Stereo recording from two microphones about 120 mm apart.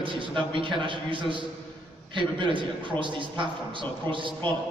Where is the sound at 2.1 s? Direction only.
45° right (ahead or behind).